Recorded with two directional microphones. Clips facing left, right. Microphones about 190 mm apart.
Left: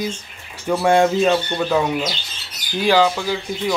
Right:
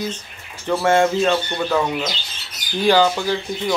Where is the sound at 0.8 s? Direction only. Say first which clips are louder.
Left 1 dB; 15° left (ahead or behind).